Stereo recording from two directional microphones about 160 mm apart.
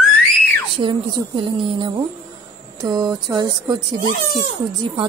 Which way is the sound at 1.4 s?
30° right (ahead or behind).